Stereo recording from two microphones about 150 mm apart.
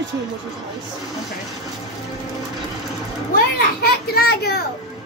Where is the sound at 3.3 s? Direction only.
90° left.